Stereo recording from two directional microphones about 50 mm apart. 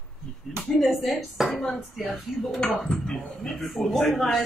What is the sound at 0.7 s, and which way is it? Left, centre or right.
Speech, centre.